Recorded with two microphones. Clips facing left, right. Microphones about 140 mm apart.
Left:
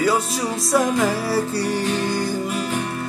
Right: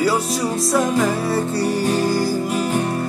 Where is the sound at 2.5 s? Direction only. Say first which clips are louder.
Right 4 dB; 35° right (ahead or behind).